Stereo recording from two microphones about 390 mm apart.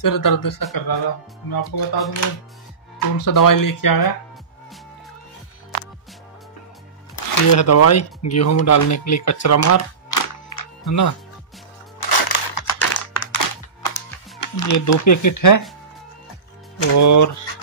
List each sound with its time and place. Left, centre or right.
0.0 s speech: left
1.5 s speech: left
3.2 s speech: left
7.2 s speech: left
12.1 s a sound: left
12.6 s computer keyboard: left
13.4 s music: left
16.9 s speech: left